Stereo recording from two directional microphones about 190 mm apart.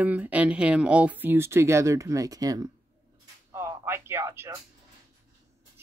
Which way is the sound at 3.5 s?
15° right (ahead or behind).